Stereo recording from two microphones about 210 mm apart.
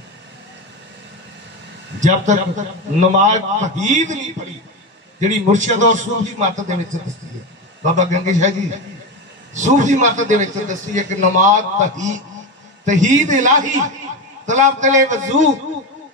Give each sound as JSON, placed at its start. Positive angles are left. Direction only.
{"t": 2.0, "sound": "a man's voice", "side_deg": -35}
{"t": 5.2, "sound": "a man's voice", "side_deg": -35}
{"t": 7.8, "sound": "a man's voice", "side_deg": -35}